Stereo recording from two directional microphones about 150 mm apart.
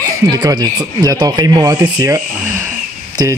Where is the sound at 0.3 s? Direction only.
25° right (ahead or behind).